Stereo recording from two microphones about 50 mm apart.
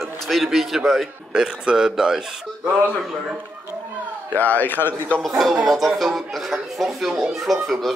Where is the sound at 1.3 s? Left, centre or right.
Centre.